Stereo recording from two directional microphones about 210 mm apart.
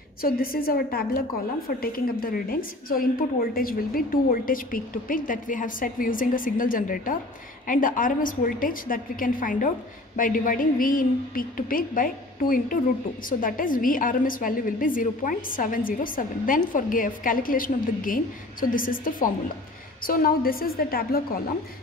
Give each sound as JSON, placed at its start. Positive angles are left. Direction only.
{"t": 0.2, "sound": "a woman's voice", "side_deg": 45}